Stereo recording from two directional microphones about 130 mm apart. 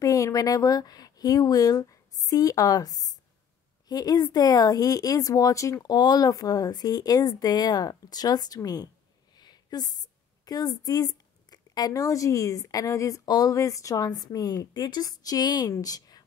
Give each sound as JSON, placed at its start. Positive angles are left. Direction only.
{"t": 0.0, "sound": "a woman's voice", "side_deg": 25}